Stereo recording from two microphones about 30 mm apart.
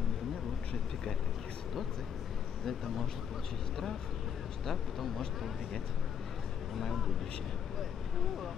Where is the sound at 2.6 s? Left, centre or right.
Centre.